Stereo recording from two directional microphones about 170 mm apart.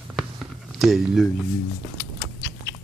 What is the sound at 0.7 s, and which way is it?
Speech, centre (ahead or behind).